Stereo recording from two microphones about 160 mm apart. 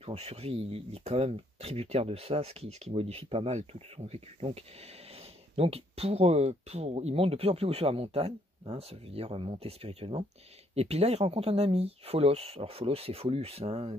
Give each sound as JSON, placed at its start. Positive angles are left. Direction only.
{"t": 0.0, "sound": "speech", "side_deg": -40}